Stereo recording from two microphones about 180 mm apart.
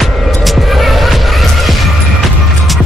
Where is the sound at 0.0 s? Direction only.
Centre (ahead or behind).